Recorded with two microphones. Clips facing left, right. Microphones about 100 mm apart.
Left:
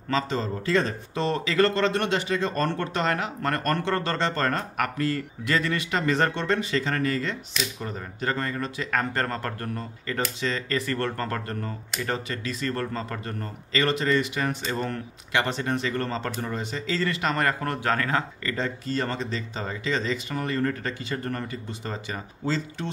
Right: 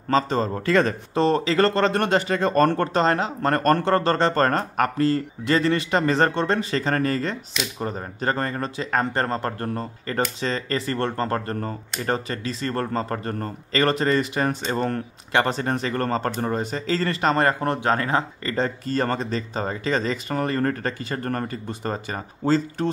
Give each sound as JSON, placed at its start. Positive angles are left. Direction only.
{"t": 0.1, "sound": "speech", "side_deg": -45}
{"t": 1.1, "sound": "speech", "side_deg": -35}